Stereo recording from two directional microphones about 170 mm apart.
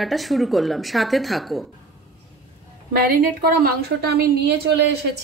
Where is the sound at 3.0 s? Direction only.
60° right (ahead or behind).